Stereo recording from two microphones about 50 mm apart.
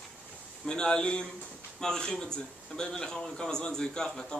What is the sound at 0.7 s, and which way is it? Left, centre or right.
A man's voice, centre.